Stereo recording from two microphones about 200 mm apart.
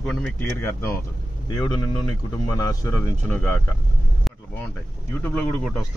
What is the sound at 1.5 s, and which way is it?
Speech, 20° left (ahead or behind).